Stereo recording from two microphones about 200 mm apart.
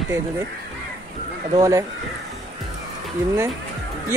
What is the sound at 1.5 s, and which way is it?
Speech, 15° right (ahead or behind).